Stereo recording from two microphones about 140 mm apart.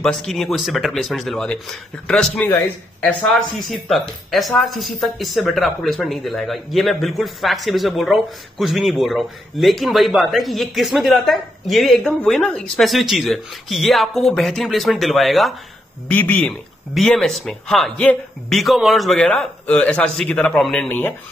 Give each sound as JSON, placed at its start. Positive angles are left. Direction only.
{"t": 0.0, "sound": "speech", "side_deg": 5}
{"t": 16.1, "sound": "speech", "side_deg": 10}